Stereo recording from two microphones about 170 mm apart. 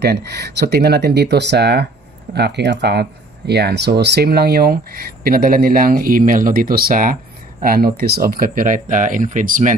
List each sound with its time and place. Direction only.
0.0 s speech: 70° right (ahead or behind); by 9.8 s 50° right (ahead or behind)